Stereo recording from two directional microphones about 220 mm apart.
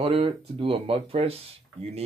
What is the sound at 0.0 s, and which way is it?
Speech, 25° right (ahead or behind).